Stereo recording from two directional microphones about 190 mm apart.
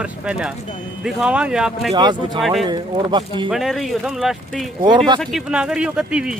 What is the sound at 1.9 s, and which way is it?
Speech, 20° right (ahead or behind).